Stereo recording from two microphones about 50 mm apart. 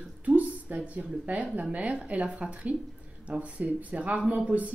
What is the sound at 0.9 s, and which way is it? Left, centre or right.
Speech, right.